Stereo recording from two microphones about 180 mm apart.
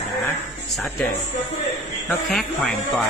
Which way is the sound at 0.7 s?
Centre (ahead or behind).